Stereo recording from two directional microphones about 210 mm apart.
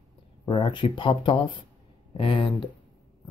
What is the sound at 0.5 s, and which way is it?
Speech, 25° left (ahead or behind).